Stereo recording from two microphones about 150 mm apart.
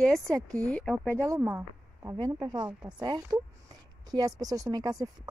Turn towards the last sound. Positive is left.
turn(degrees=-25)  # may be behind; listen again after turning